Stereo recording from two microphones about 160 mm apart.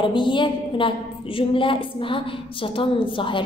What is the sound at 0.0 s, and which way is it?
A woman's voice, 30° left (ahead or behind).